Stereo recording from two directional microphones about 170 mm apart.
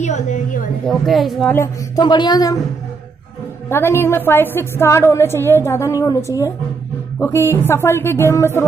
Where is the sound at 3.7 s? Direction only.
15° left (ahead or behind).